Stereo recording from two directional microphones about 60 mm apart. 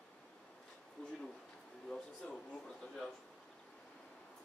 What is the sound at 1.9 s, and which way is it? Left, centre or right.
Speech, centre.